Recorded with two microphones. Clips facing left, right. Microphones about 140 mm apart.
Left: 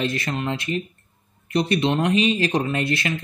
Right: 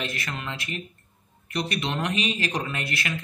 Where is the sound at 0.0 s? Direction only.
25° left (ahead or behind).